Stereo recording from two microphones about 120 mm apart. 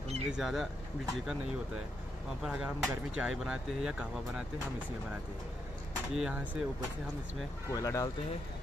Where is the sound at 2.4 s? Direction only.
5° right (ahead or behind).